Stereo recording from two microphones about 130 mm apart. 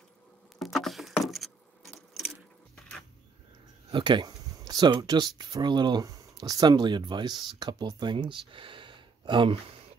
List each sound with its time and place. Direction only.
0.6 s keys jangling: centre (ahead or behind)
3.9 s speech: 35° right (ahead or behind)